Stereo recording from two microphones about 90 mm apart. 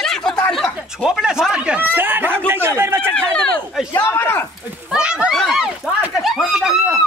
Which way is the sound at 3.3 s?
10° left (ahead or behind).